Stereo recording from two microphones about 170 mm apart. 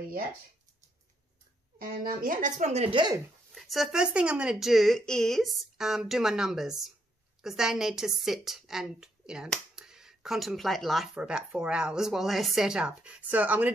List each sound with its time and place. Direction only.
1.8 s speech: 60° right (ahead or behind); by 3.2 s 30° right (ahead or behind)
3.5 s a woman's voice: centre (ahead or behind)